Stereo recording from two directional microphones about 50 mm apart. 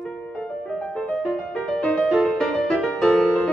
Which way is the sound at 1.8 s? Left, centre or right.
Centre.